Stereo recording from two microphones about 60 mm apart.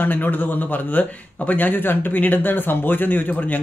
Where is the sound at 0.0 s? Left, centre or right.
Left.